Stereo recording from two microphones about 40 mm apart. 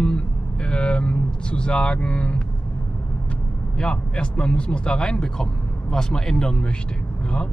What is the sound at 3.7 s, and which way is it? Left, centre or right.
Speech, left.